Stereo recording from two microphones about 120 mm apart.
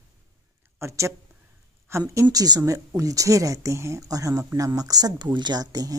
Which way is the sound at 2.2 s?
35° right (ahead or behind).